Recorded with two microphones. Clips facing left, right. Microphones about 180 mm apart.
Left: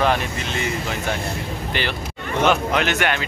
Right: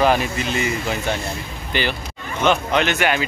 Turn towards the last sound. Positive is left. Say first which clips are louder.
# right 2 dB
turn(degrees=-5)  # may be behind; listen again after turning